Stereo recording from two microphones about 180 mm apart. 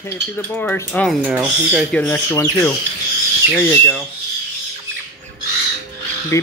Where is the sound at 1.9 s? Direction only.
10° left (ahead or behind).